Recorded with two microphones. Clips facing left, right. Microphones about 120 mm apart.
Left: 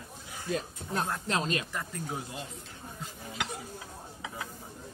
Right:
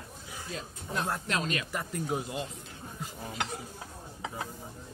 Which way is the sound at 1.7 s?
10° right (ahead or behind).